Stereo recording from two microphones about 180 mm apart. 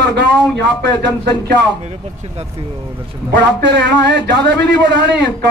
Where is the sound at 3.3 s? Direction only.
75° right (ahead or behind).